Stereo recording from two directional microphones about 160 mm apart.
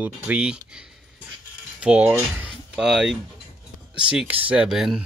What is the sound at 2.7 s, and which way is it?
Speech, 5° right (ahead or behind).